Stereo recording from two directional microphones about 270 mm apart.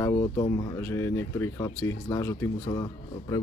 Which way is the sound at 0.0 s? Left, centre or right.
Centre.